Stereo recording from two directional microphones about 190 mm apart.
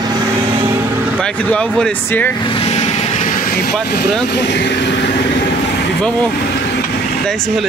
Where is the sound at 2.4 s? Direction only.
25° left (ahead or behind); by 3.7 s 50° left (ahead or behind).